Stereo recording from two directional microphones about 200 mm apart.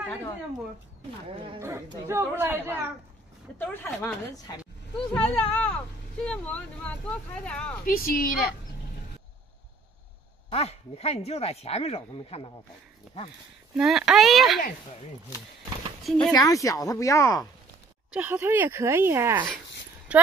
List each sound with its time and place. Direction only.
1.6 s speech: 15° right (ahead or behind)
3.5 s speech: 10° left (ahead or behind)
4.9 s speech: 25° left (ahead or behind)
5.5 s speech: 5° left (ahead or behind)
7.8 s a woman's voice: 45° left (ahead or behind)
10.5 s speech: 30° left (ahead or behind)
13.7 s speech: centre (ahead or behind)
16.0 s speech: centre (ahead or behind)
16.3 s speech: 15° left (ahead or behind)
18.1 s speech: 10° right (ahead or behind)